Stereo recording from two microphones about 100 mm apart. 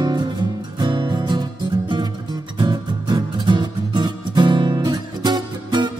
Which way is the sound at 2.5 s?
50° right (ahead or behind).